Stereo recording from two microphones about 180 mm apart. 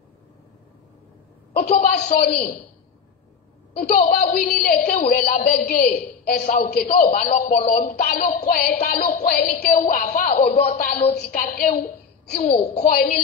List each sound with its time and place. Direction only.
1.5 s a woman's voice: 60° left (ahead or behind)
3.7 s a woman's voice: 55° left (ahead or behind)